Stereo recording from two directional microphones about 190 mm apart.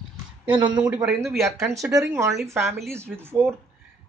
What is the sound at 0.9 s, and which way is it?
A man's voice, 5° right (ahead or behind).